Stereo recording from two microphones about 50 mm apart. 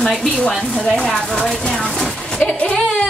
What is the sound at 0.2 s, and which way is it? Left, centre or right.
A woman's voice, centre.